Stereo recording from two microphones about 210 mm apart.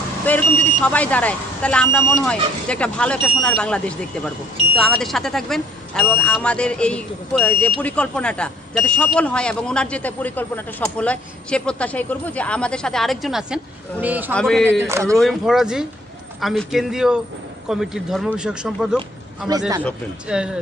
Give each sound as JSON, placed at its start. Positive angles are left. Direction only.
{"t": 0.2, "sound": "speech", "side_deg": 10}
{"t": 14.3, "sound": "speech", "side_deg": 5}
{"t": 14.7, "sound": "speech", "side_deg": -10}
{"t": 15.0, "sound": "speech", "side_deg": 0}
{"t": 19.5, "sound": "speech", "side_deg": -20}
{"t": 20.2, "sound": "speech", "side_deg": -5}